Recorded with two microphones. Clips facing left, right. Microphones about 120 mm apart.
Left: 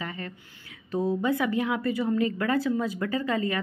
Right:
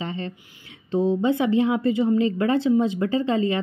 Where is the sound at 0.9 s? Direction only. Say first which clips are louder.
Right 5 dB; 25° right (ahead or behind).